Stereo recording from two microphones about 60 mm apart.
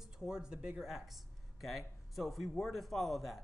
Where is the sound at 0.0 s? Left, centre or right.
Centre.